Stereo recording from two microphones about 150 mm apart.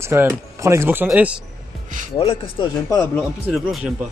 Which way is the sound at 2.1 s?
40° left (ahead or behind).